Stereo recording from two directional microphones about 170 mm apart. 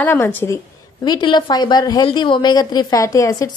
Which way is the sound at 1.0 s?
25° left (ahead or behind).